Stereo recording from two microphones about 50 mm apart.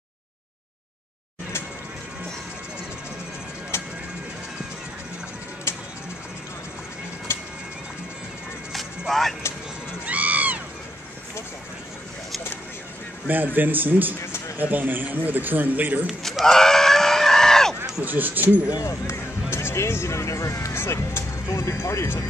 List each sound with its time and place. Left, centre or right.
3.7 s music: left
5.7 s bird: left
7.3 s bird: left
8.7 s music: centre
10.0 s a sound: right
13.3 s a man's voice: right
16.4 s screaming: centre
18.0 s a man's voice: right
18.8 s speech: left
20.7 s a sound: left